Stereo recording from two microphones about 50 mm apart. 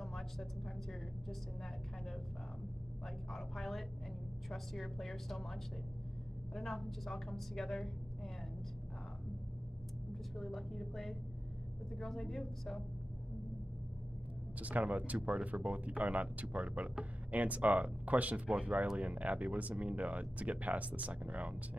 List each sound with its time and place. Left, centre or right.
0.0 s a woman's voice: centre
3.3 s a woman's voice: centre
10.3 s a woman's voice: centre
14.6 s speech: right